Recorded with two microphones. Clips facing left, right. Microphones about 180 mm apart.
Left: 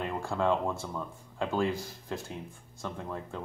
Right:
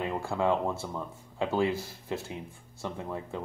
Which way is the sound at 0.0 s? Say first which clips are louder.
Right 2 dB; 5° right (ahead or behind).